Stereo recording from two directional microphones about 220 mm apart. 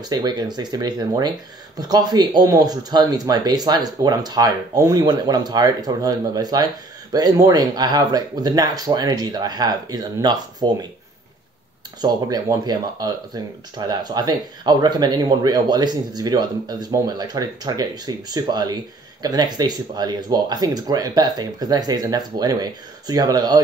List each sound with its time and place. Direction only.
0.0 s speech: 20° right (ahead or behind)
12.0 s speech: 20° right (ahead or behind)